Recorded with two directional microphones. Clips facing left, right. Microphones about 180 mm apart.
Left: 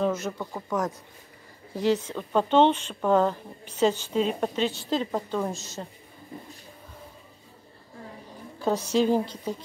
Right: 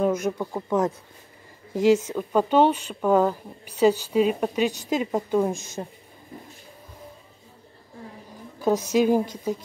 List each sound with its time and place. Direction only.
0.0 s speech: 15° right (ahead or behind)
2.1 s speech: 10° right (ahead or behind)
5.5 s a woman's voice: 50° right (ahead or behind)
8.5 s speech: 15° right (ahead or behind)